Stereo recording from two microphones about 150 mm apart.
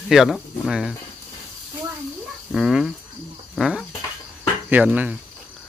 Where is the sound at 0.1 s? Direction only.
Centre (ahead or behind).